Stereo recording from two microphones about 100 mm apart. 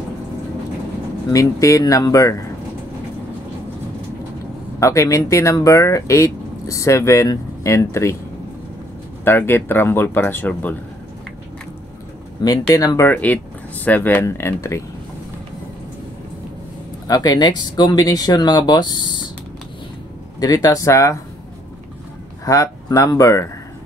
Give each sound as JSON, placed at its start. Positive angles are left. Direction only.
{"t": 1.3, "sound": "speech", "side_deg": 35}
{"t": 4.7, "sound": "speech", "side_deg": 30}
{"t": 9.2, "sound": "speech", "side_deg": 25}
{"t": 12.4, "sound": "speech", "side_deg": 35}
{"t": 17.1, "sound": "speech", "side_deg": 40}
{"t": 20.3, "sound": "speech", "side_deg": 40}
{"t": 22.4, "sound": "speech", "side_deg": 35}